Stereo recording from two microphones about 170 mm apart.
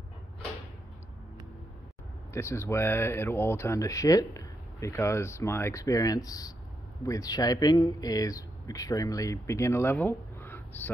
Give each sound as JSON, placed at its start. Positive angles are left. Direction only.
{"t": 2.3, "sound": "speech", "side_deg": 15}